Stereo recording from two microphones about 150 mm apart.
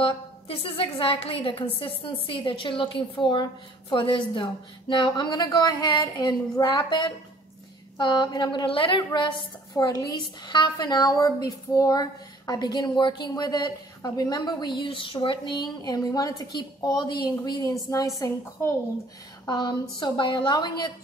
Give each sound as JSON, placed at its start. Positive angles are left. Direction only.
{"t": 0.0, "sound": "a woman's voice", "side_deg": 35}